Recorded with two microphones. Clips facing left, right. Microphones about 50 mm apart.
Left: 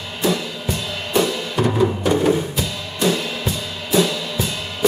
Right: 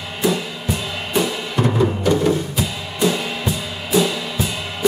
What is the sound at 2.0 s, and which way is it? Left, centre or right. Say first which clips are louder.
Music: even; centre.